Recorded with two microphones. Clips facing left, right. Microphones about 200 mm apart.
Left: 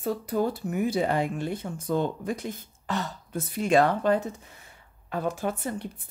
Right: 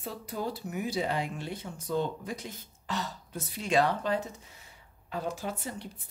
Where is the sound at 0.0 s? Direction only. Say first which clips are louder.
Left 9 dB; 50° left (ahead or behind).